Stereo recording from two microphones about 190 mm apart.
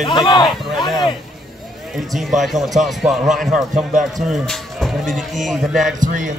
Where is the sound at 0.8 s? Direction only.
Centre (ahead or behind).